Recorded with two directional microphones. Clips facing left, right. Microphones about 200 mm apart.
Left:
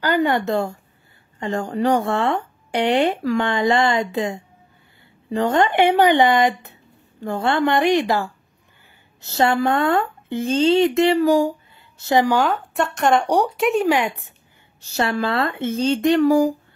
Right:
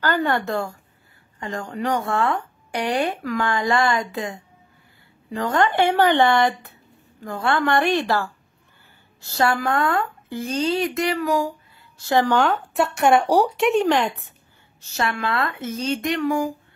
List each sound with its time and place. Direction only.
0.0 s speech: 15° left (ahead or behind)
12.0 s speech: 15° left (ahead or behind)
12.4 s speech: centre (ahead or behind)
14.8 s speech: 35° left (ahead or behind)